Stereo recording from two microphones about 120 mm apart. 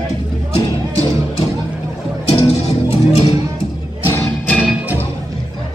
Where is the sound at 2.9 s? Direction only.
55° left (ahead or behind).